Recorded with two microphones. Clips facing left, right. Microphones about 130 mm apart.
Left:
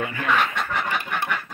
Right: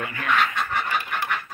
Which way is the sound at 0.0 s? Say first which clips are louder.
Left 3 dB; 25° left (ahead or behind).